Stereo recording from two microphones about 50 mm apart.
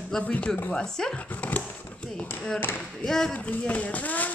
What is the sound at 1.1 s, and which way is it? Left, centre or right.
Speech, left.